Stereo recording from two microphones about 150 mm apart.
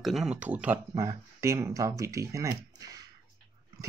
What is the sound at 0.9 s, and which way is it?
Speech, 20° right (ahead or behind).